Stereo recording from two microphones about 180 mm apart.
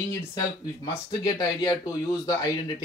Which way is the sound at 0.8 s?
20° left (ahead or behind).